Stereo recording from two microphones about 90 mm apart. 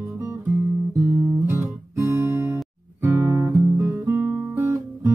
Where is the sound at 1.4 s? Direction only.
30° right (ahead or behind).